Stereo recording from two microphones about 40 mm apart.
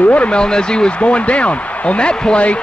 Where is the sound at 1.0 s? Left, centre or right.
Left.